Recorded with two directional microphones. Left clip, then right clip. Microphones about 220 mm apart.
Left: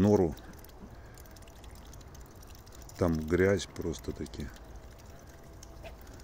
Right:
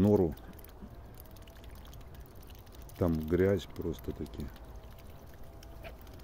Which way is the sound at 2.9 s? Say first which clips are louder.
Left 2 dB; centre (ahead or behind).